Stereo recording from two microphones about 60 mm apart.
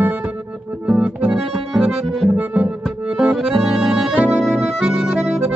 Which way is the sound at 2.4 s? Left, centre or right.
Right.